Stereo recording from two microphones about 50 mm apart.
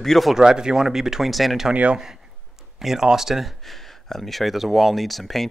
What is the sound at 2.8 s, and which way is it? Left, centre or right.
Speech, centre.